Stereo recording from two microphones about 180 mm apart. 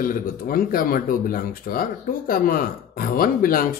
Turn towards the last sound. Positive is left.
turn(degrees=50)  # may be behind; listen again after turning